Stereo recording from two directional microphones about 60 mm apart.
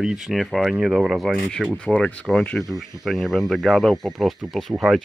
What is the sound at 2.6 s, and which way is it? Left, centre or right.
Speech, centre.